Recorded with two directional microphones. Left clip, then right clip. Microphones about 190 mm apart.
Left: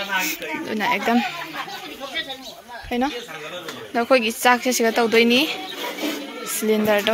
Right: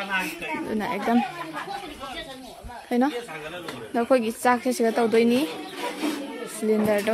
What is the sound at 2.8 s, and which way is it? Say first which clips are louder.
Speech: even; 20° right (ahead or behind).